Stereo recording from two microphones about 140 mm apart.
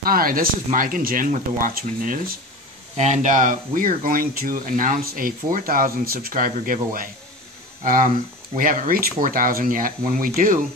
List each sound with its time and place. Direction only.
0.0 s speech: 90° right
3.0 s speech: 60° right (ahead or behind); by 7.1 s 90° right
7.8 s speech: 70° right (ahead or behind)
8.5 s speech: 80° right